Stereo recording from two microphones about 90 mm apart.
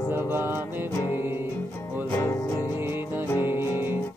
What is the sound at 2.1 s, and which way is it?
Music, 35° left (ahead or behind).